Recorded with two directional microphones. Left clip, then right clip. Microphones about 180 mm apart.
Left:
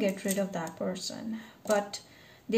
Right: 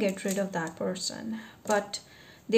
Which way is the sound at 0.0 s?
35° right (ahead or behind).